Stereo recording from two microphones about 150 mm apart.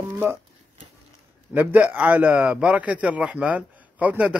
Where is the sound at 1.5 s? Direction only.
10° right (ahead or behind).